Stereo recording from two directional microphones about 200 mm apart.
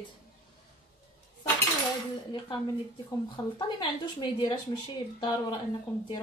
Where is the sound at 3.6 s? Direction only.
20° left (ahead or behind).